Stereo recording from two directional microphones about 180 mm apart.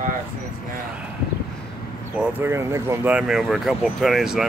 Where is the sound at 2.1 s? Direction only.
10° right (ahead or behind).